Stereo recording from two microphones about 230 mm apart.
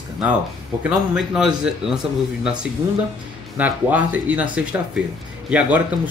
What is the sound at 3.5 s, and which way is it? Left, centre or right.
Speech, centre.